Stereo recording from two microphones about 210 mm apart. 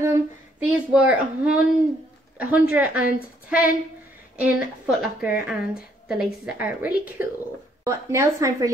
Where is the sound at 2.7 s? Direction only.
5° right (ahead or behind).